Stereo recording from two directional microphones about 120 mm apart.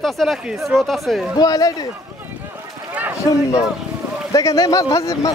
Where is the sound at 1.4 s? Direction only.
30° left (ahead or behind).